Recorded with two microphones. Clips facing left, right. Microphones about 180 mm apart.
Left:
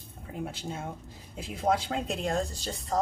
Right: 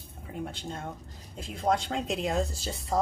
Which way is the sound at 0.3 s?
5° left (ahead or behind).